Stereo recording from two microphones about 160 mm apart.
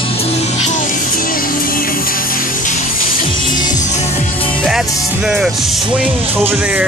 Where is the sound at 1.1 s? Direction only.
60° left (ahead or behind).